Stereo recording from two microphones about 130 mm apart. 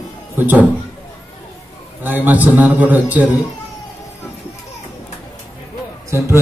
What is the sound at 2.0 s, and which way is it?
A man's voice, 15° right (ahead or behind).